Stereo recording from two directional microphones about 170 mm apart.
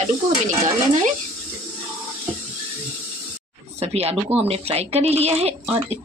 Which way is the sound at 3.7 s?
35° right (ahead or behind).